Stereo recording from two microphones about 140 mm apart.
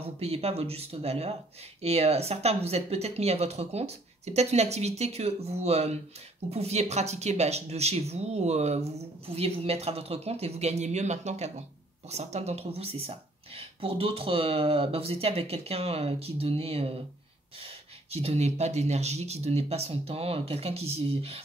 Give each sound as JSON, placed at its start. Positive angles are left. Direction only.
{"t": 0.0, "sound": "speech", "side_deg": -45}